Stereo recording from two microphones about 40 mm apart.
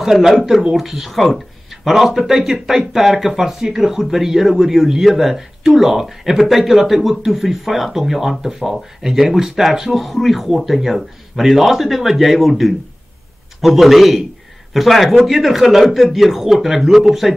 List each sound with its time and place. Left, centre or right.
0.0 s a man's voice: centre